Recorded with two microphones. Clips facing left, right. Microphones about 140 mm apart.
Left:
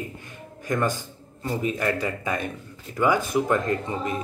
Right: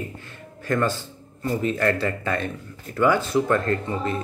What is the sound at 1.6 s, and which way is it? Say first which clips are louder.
A man's voice: right 3 dB; 15° left (ahead or behind).